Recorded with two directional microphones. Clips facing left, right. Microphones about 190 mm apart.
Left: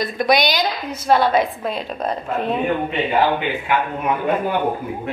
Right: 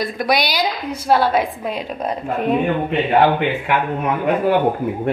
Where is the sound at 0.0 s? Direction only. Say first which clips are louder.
Left 2 dB; 10° right (ahead or behind).